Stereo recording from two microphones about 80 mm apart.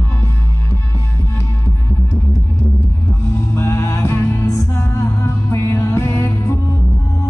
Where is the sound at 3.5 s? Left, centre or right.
Left.